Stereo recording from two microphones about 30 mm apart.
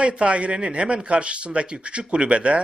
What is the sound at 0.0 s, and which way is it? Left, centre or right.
Speech, right.